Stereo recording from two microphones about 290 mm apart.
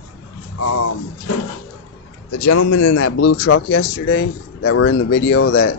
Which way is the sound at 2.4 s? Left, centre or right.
Left.